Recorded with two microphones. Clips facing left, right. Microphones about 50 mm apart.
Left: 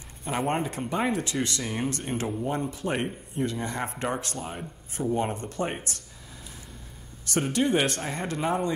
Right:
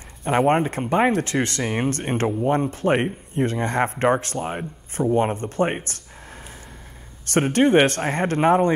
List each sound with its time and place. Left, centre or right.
0.2 s speech: right
7.2 s speech: right